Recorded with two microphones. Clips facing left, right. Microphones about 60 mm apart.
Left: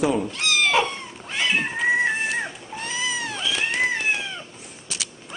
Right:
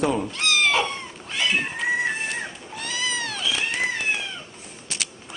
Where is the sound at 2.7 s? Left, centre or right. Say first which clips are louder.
Even; left.